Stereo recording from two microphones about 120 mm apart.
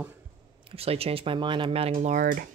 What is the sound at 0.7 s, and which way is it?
Speech, 55° right (ahead or behind).